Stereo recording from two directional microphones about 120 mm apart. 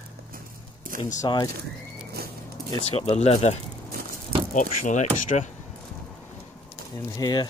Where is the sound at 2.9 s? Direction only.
60° left (ahead or behind).